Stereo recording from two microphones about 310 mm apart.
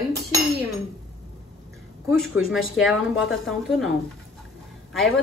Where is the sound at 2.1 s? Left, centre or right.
Centre.